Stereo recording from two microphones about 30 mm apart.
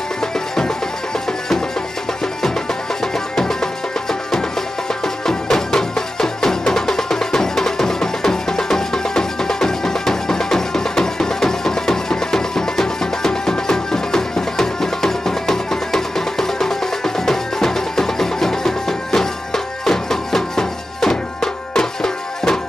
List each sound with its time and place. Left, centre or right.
3.0 s music: centre
5.5 s music: centre